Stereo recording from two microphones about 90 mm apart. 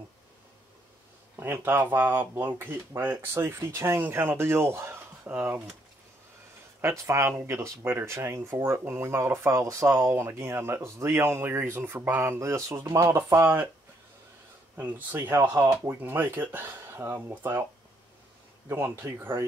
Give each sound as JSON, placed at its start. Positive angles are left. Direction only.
{"t": 1.3, "sound": "speech", "side_deg": -25}
{"t": 6.8, "sound": "speech", "side_deg": -30}
{"t": 14.8, "sound": "speech", "side_deg": -20}
{"t": 15.9, "sound": "speech", "side_deg": -25}
{"t": 19.0, "sound": "speech", "side_deg": -25}